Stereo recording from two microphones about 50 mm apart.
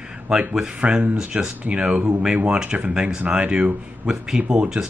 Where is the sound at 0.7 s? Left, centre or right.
Right.